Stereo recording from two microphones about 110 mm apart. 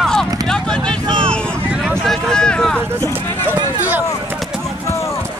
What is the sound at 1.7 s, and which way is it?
Vehicle, 10° right (ahead or behind).